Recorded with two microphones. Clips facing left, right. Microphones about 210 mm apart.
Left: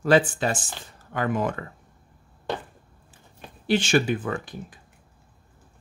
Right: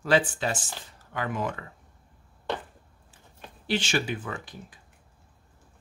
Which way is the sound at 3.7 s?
50° left (ahead or behind).